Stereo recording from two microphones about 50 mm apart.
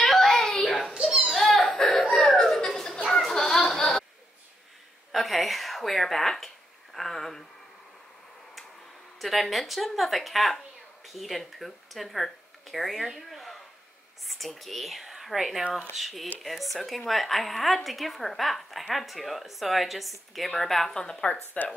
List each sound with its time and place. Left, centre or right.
0.0 s child singing: centre
0.9 s children playing: centre
1.3 s a sound: centre
5.1 s speech: centre
9.2 s a woman's voice: centre
13.3 s a sound: centre
14.2 s a woman's voice: centre
21.6 s speech: left